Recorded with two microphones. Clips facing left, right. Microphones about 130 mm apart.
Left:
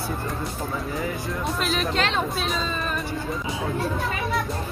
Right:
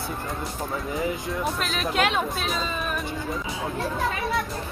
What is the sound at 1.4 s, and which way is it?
Speech, centre (ahead or behind).